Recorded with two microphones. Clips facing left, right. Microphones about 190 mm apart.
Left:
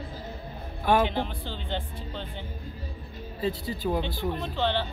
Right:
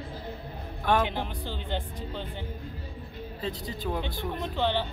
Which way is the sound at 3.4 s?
5° left (ahead or behind).